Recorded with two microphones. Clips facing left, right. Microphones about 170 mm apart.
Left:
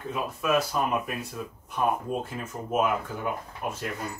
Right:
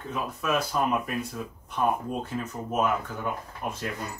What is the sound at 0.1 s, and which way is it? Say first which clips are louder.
Speech: left 2 dB; 5° left (ahead or behind).